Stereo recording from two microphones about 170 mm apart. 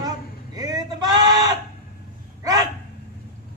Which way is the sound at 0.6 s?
20° right (ahead or behind).